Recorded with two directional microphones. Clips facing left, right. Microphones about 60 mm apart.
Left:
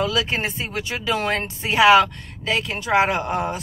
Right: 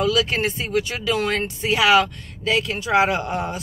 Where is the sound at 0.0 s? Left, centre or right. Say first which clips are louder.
Right 2 dB; left.